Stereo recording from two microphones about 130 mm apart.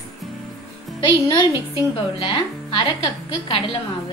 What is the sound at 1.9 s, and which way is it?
A woman's voice, 40° left (ahead or behind).